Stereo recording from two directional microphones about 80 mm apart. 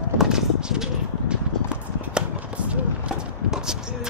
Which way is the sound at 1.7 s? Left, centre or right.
Centre.